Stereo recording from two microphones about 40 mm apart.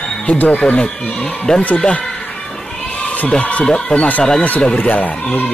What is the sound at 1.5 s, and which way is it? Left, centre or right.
Speech, left.